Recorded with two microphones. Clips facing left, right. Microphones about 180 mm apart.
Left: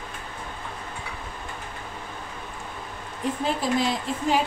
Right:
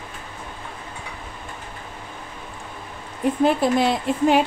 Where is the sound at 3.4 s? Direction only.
60° right (ahead or behind).